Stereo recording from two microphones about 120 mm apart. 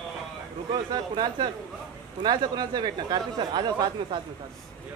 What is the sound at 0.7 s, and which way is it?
Speech, 35° right (ahead or behind).